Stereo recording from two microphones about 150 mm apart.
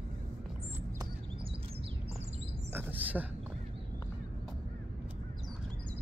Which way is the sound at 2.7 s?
10° right (ahead or behind).